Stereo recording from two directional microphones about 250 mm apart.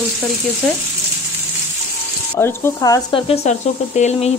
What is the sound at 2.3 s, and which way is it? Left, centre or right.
Speech, centre.